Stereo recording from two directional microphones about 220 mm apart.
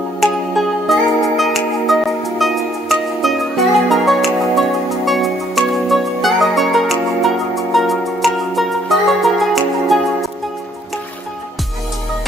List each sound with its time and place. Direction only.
0.2 s music: centre (ahead or behind)